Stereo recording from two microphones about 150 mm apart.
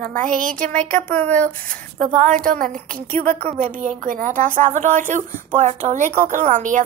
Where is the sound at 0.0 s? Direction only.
65° right (ahead or behind).